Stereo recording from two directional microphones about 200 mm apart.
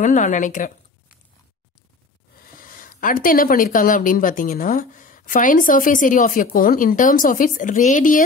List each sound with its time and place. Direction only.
0.0 s speech: 40° left (ahead or behind)
2.4 s speech: 45° left (ahead or behind)